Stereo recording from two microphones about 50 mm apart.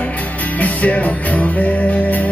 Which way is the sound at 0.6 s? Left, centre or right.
Left.